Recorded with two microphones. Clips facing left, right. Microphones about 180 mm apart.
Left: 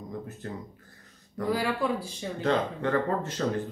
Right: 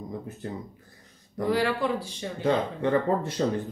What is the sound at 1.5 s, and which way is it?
Speech, 5° left (ahead or behind).